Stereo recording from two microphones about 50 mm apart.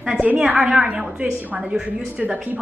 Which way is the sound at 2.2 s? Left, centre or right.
Right.